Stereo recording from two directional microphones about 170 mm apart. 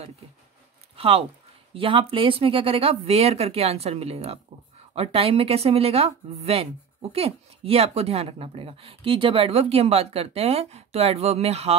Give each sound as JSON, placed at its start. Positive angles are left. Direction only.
{"t": 0.9, "sound": "speech", "side_deg": -35}